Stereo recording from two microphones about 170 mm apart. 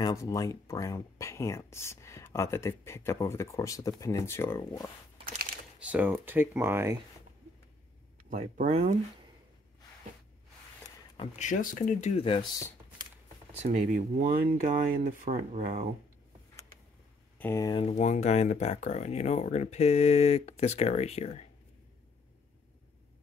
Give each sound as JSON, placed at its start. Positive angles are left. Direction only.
{"t": 0.0, "sound": "speech", "side_deg": 20}
{"t": 5.8, "sound": "speech", "side_deg": -5}
{"t": 8.3, "sound": "speech", "side_deg": -50}
{"t": 11.3, "sound": "speech", "side_deg": 45}
{"t": 12.2, "sound": "speech", "side_deg": 30}
{"t": 13.5, "sound": "speech", "side_deg": -40}
{"t": 17.4, "sound": "speech", "side_deg": 15}
{"t": 17.7, "sound": "speech", "side_deg": 40}